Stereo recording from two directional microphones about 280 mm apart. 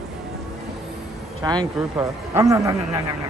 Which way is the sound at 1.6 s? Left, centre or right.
Centre.